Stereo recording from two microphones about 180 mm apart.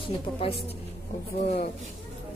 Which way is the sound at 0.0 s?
30° left (ahead or behind).